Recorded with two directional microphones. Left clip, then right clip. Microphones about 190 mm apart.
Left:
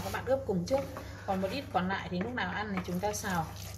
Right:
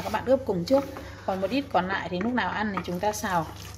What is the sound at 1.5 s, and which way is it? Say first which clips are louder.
Speech: right 7 dB; 40° right (ahead or behind).